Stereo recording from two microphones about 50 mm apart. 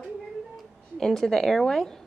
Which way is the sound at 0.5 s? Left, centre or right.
Centre.